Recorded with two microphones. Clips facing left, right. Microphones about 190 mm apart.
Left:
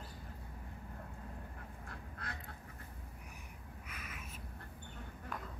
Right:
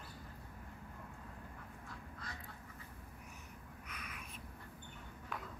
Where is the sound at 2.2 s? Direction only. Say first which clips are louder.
Left 4 dB; 60° left (ahead or behind).